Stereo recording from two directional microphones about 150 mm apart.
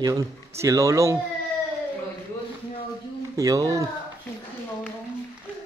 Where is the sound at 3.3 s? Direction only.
25° right (ahead or behind).